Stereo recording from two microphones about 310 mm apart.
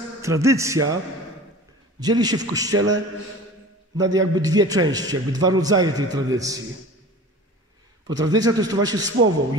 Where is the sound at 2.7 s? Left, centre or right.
Right.